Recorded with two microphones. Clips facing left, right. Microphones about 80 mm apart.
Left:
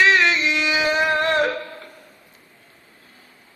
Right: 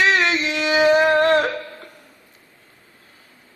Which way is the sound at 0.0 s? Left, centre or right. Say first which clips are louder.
Left 1 dB; right.